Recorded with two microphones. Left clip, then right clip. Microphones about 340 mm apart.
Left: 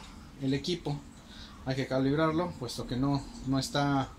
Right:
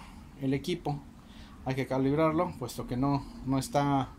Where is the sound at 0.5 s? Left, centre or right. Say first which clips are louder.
Right 1 dB; centre.